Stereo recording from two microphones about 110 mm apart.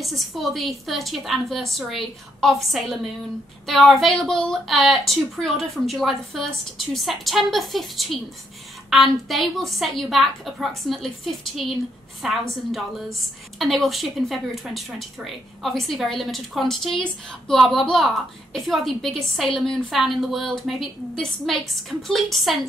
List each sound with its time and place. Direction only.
0.0 s a woman's voice: centre (ahead or behind)